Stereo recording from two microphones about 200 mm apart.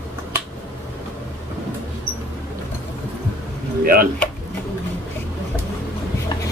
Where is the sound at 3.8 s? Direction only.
45° right (ahead or behind).